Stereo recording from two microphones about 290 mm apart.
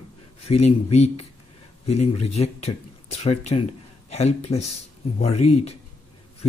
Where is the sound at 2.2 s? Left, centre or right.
Left.